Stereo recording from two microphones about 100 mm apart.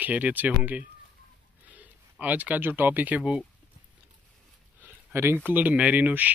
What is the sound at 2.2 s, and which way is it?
Speech, 15° right (ahead or behind).